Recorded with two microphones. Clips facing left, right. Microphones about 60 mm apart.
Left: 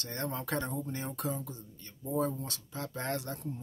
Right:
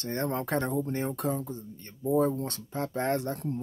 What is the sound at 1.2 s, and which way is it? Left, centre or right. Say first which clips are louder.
Speech: right 6 dB; right.